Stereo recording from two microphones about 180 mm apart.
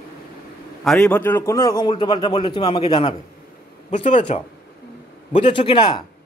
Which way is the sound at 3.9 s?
40° left (ahead or behind).